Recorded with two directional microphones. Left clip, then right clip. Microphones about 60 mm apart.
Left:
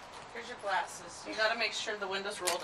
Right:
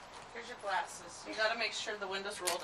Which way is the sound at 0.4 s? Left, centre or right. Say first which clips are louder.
Left 3 dB; right.